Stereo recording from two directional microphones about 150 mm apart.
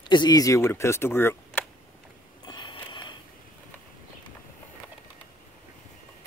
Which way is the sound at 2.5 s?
30° left (ahead or behind).